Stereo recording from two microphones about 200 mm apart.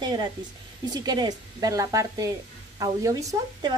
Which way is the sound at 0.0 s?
20° right (ahead or behind).